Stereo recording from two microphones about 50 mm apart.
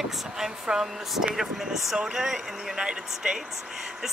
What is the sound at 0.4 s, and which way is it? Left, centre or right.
Speech, centre.